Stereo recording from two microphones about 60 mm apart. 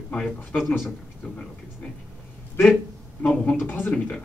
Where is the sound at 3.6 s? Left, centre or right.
Left.